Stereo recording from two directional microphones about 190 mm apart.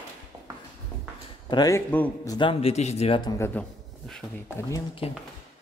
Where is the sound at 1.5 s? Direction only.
20° left (ahead or behind).